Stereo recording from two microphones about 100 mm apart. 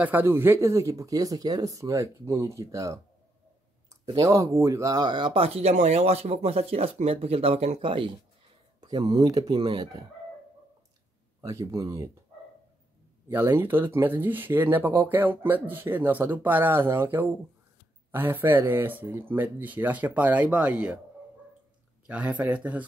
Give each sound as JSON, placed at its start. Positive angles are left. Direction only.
{"t": 0.0, "sound": "speech", "side_deg": -20}
{"t": 4.0, "sound": "speech", "side_deg": -35}
{"t": 8.8, "sound": "speech", "side_deg": -40}
{"t": 11.7, "sound": "speech", "side_deg": -35}
{"t": 13.3, "sound": "speech", "side_deg": -25}
{"t": 22.0, "sound": "speech", "side_deg": -15}